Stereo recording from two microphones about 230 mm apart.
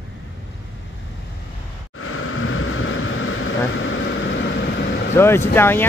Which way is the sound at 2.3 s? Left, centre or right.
Left.